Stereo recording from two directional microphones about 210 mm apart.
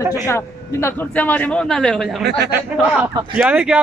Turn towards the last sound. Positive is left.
turn(degrees=-5)  # may be behind; listen again after turning